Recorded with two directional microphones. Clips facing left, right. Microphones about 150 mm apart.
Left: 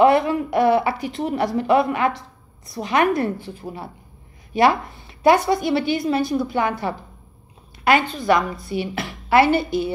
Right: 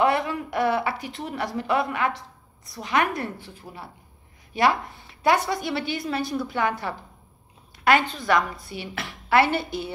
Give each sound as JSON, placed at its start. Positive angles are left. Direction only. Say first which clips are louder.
{"t": 0.0, "sound": "speech", "louder": "left 7 dB", "side_deg": 20}
{"t": 5.2, "sound": "a woman's voice", "louder": "left 6 dB", "side_deg": 15}